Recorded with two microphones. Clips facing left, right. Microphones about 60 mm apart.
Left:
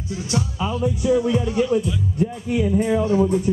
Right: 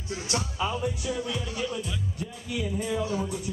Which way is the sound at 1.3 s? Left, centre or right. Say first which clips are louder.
Left 12 dB; left.